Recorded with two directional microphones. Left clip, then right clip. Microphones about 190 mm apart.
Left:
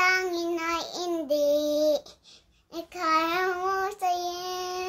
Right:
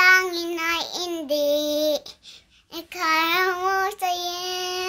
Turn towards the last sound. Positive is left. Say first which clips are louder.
# right 5 dB
turn(degrees=5)  # may be behind; listen again after turning